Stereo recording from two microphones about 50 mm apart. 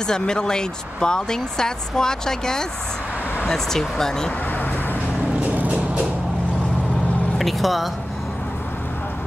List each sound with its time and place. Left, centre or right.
0.0 s speech: centre
7.3 s speech: centre